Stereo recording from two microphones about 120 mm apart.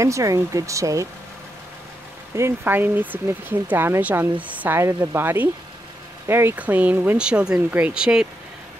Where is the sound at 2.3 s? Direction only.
20° right (ahead or behind).